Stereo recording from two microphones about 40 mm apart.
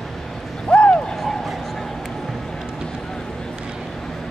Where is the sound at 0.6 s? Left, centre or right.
Left.